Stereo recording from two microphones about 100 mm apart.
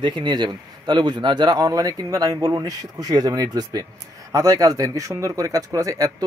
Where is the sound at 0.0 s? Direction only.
50° right (ahead or behind).